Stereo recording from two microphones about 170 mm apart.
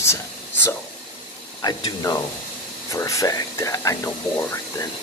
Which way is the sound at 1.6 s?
20° left (ahead or behind).